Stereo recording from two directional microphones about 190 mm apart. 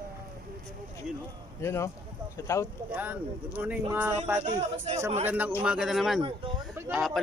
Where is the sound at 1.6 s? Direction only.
15° left (ahead or behind).